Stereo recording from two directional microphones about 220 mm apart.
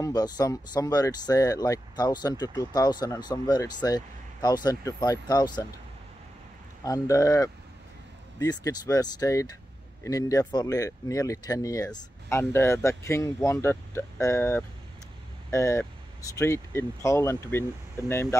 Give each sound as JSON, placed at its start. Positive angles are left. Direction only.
{"t": 0.0, "sound": "speech", "side_deg": 15}
{"t": 6.8, "sound": "speech", "side_deg": 15}